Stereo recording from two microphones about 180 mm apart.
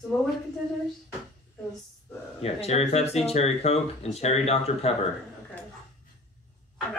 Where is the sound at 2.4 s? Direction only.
35° left (ahead or behind).